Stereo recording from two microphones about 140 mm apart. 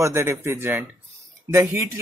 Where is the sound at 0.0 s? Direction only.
20° right (ahead or behind).